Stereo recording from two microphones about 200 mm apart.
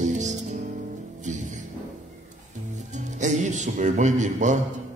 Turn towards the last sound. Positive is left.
turn(degrees=-35)  # may be behind; listen again after turning